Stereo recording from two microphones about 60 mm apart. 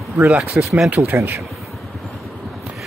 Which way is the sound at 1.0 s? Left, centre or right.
Right.